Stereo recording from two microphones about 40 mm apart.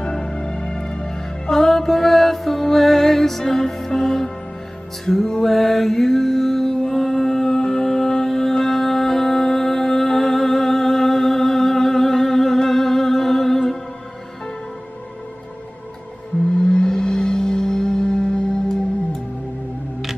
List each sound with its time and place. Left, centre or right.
0.0 s music: centre
5.5 s mantra: centre
16.5 s music: centre